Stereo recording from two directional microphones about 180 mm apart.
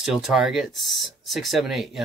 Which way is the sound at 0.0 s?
Centre (ahead or behind).